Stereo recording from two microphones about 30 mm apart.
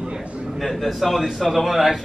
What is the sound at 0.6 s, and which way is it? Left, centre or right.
A man's voice, centre.